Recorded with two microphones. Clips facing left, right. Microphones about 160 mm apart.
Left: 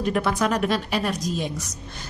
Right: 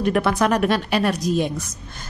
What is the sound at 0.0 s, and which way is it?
A woman's voice, 65° right (ahead or behind).